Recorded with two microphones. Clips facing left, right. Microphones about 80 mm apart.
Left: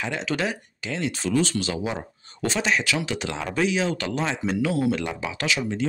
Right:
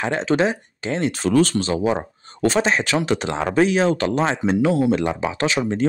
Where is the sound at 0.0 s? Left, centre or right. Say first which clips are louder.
Right 7 dB; right.